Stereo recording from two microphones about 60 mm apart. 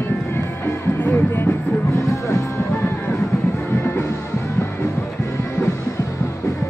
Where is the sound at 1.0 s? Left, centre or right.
Left.